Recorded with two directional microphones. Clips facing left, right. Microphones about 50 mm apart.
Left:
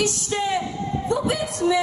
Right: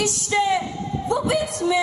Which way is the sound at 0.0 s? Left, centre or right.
Right.